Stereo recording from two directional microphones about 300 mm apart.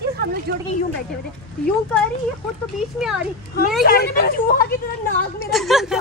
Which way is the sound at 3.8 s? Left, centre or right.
Left.